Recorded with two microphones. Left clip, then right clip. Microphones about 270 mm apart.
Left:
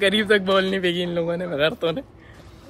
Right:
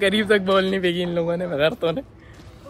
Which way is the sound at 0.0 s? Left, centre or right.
Centre.